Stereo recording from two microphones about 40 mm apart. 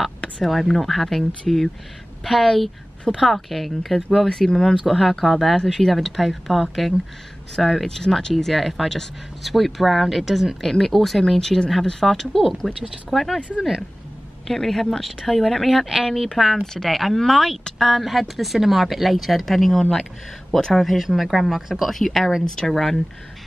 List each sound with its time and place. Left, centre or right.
0.5 s speech: centre
4.3 s speech: centre
4.8 s speech: centre
10.6 s speech: centre
14.5 s speech: centre
16.6 s speech: centre
21.9 s speech: centre